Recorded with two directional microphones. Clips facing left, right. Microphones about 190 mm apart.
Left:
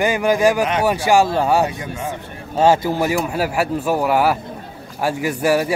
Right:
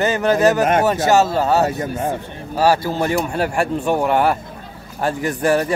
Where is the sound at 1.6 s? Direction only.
45° right (ahead or behind).